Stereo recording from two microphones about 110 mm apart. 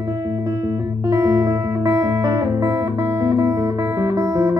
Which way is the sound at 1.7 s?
30° right (ahead or behind).